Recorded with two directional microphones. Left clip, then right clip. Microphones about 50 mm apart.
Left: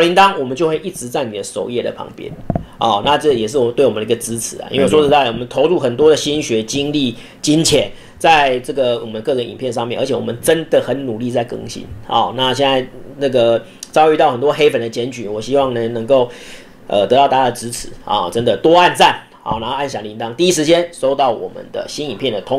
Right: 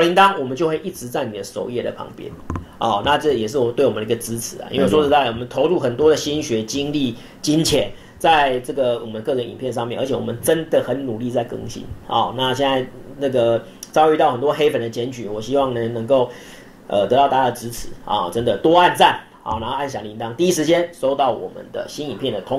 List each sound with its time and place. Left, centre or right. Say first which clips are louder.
0.0 s speech: left 3 dB; left